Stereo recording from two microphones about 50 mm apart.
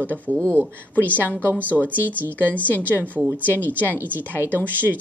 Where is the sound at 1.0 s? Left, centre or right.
Right.